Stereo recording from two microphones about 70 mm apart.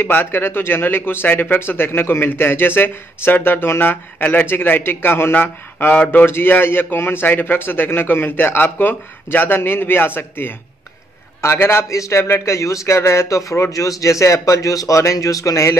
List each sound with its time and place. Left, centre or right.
0.0 s speech: left